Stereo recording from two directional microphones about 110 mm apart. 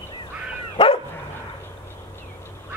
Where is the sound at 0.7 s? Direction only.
55° left (ahead or behind).